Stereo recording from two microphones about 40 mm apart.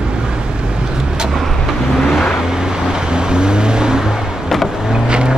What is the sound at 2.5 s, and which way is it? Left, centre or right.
Vehicle, centre.